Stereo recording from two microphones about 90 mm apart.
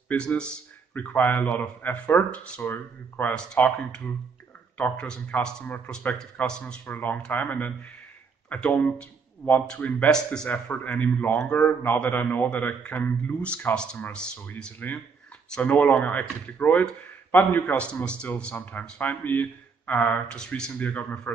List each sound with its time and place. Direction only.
0.1 s a man's voice: 15° left (ahead or behind)
5.7 s speech: 20° left (ahead or behind)
6.1 s a man's voice: 10° left (ahead or behind)
6.6 s a man's voice: 20° left (ahead or behind)